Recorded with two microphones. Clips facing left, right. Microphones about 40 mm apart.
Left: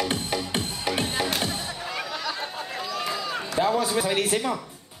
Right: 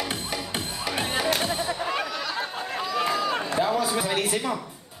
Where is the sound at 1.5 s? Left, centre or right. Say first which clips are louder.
Right 5 dB; centre.